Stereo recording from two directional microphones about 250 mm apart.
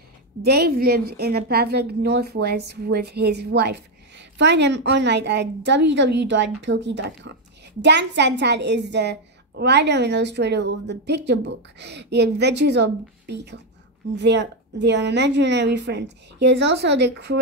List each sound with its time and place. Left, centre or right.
0.4 s a woman's voice: right